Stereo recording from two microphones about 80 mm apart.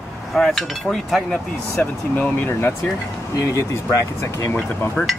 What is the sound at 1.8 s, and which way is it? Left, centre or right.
Speech, left.